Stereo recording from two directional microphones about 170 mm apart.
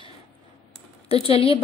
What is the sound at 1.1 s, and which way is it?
Speech, 35° left (ahead or behind).